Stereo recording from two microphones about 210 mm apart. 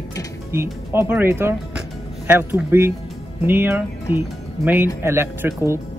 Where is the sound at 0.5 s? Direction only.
10° right (ahead or behind).